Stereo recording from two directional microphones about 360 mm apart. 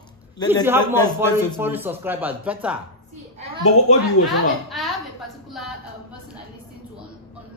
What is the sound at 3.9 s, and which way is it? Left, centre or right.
Speech, centre.